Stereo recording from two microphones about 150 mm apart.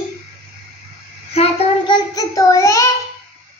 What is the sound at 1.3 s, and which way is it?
Child singing, 40° left (ahead or behind).